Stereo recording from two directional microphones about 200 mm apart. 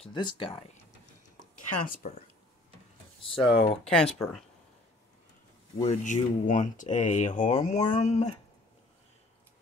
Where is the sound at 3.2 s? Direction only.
25° left (ahead or behind).